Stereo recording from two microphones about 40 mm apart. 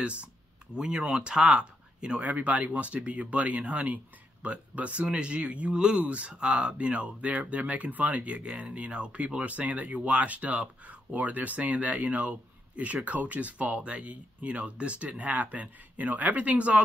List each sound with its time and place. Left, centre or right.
0.0 s speech: right
2.2 s speech: right